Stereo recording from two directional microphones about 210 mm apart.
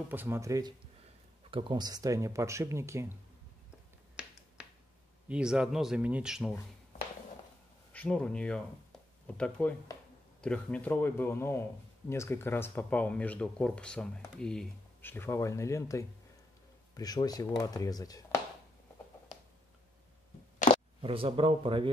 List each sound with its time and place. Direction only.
0.1 s speech: 10° right (ahead or behind)
4.2 s finger snapping: 5° right (ahead or behind)
5.3 s speech: 5° right (ahead or behind)
7.9 s speech: 5° left (ahead or behind)
21.0 s speech: 25° right (ahead or behind)